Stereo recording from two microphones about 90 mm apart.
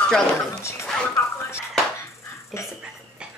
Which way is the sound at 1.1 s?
30° left (ahead or behind).